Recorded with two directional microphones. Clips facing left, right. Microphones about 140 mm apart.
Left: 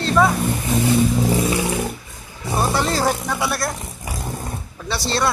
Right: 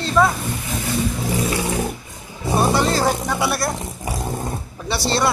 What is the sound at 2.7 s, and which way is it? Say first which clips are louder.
Speech: right 1 dB; centre (ahead or behind).